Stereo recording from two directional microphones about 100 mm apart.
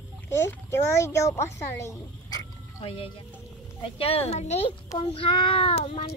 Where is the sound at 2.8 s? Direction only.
65° left (ahead or behind).